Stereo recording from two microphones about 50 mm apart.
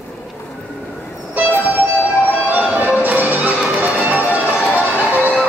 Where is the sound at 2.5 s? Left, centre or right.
Right.